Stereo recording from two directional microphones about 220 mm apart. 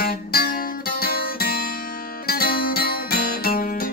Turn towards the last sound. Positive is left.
turn(degrees=40)  # may be behind; listen again after turning